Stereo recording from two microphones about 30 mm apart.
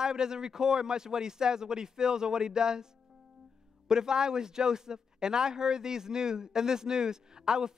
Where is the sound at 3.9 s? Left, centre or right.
Right.